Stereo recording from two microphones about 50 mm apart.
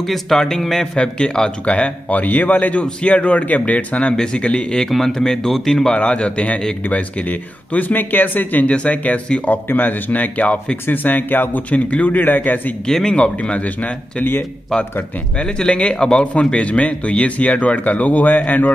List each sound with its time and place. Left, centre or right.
0.0 s speech: centre
0.9 s speech: centre
1.7 s speech: left
4.8 s speech: centre
5.9 s speech: left
8.6 s speech: left
10.9 s speech: left
11.7 s speech: left
12.8 s speech: centre
13.2 s speech: left
15.3 s speech: centre; by 18.7 s left